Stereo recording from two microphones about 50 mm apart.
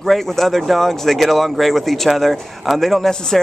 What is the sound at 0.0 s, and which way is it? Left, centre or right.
Speech, centre.